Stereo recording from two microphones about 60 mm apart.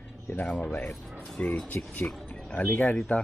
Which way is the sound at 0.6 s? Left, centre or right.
Centre.